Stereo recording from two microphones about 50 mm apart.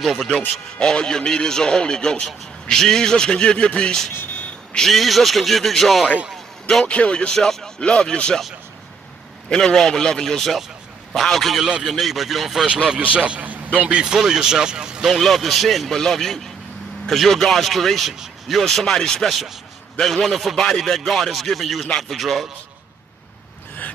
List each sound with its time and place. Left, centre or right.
0.0 s speech: centre
0.7 s speech: centre
4.7 s speech: centre
6.9 s speech: left
9.5 s speech: centre
11.7 s speech: centre
13.4 s a man's voice: right
14.1 s speech: centre
15.1 s speech: centre